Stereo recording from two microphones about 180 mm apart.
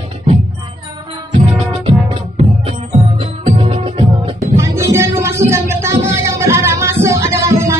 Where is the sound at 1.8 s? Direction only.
30° right (ahead or behind).